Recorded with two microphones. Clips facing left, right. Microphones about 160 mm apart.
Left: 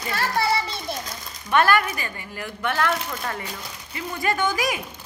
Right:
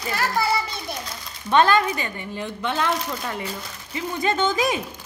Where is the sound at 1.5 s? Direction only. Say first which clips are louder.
Right 2 dB; 20° right (ahead or behind).